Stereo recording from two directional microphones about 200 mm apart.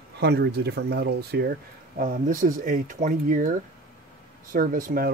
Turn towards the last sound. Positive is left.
turn(degrees=-45)  # may be behind; listen again after turning